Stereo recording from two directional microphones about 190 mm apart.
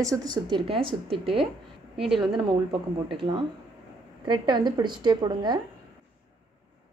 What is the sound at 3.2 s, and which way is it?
Speech, 25° right (ahead or behind).